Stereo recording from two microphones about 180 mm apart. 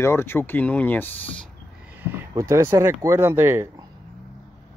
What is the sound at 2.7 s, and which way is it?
Speech, 15° right (ahead or behind).